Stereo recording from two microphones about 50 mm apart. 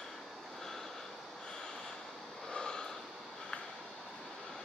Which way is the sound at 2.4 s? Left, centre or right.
Centre.